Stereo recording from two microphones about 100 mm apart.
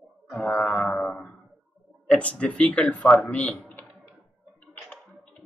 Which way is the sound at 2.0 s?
10° left (ahead or behind).